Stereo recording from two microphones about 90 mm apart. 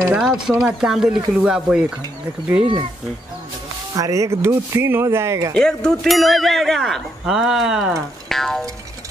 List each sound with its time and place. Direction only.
0.1 s speech: 10° right (ahead or behind)
3.9 s speech: 40° right (ahead or behind)
5.5 s speech: 5° left (ahead or behind)